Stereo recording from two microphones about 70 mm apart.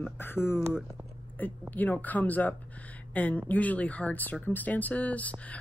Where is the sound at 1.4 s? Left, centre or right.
Left.